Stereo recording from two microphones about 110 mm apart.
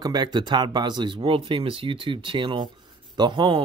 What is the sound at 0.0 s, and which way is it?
Speech, 40° right (ahead or behind).